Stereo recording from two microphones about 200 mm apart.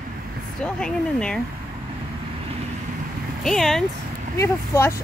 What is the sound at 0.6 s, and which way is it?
Speech, 5° left (ahead or behind).